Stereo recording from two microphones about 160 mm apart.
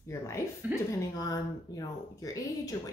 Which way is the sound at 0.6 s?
10° right (ahead or behind).